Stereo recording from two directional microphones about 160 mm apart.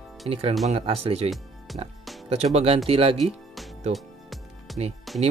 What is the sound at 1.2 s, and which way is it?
Music, centre (ahead or behind).